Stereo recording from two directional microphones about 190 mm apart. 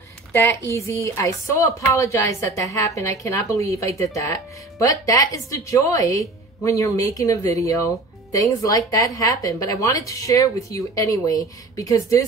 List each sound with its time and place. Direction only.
0.3 s a woman's voice: 15° left (ahead or behind)